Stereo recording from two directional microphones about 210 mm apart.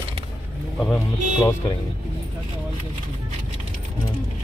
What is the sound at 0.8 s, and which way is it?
Speech, 10° left (ahead or behind).